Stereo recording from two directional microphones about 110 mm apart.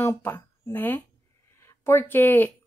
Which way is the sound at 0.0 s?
25° left (ahead or behind).